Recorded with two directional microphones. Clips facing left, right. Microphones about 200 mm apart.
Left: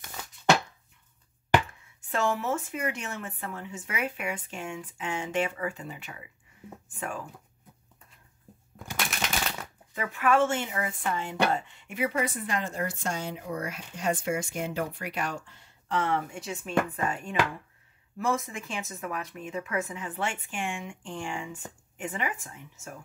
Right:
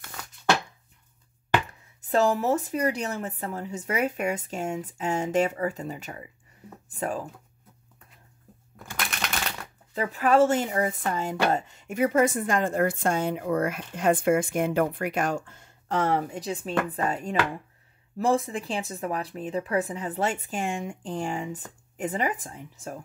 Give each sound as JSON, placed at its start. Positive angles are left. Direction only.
{"t": 2.0, "sound": "speech", "side_deg": -35}
{"t": 9.9, "sound": "speech", "side_deg": -35}